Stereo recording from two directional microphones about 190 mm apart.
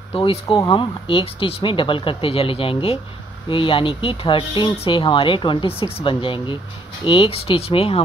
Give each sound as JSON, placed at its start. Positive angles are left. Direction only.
{"t": 0.1, "sound": "speech", "side_deg": 30}